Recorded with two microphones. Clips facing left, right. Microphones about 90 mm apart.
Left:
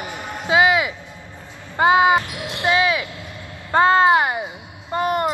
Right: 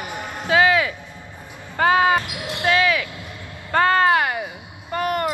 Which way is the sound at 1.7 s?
20° left (ahead or behind).